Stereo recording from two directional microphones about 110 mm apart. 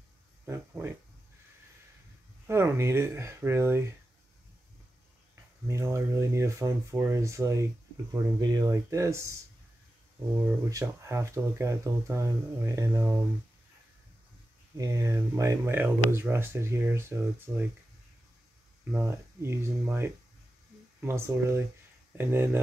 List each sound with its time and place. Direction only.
0.5 s speech: 25° right (ahead or behind)
2.4 s speech: 25° right (ahead or behind)
5.7 s speech: 25° right (ahead or behind)
8.4 s speech: 40° right (ahead or behind)
10.3 s speech: 25° right (ahead or behind)
14.8 s speech: 30° right (ahead or behind)
19.0 s speech: 25° right (ahead or behind)